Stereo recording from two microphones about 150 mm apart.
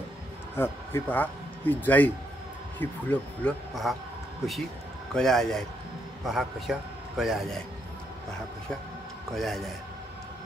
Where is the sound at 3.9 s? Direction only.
Centre (ahead or behind).